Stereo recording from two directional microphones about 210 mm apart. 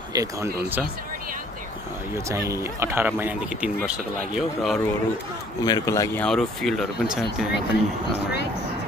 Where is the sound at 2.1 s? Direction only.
15° right (ahead or behind).